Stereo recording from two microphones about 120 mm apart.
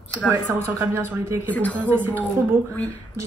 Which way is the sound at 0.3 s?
20° right (ahead or behind).